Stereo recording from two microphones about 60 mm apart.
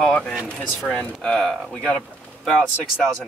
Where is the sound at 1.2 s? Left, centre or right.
Centre.